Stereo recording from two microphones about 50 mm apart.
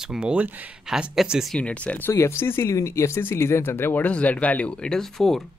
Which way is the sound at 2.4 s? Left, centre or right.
Left.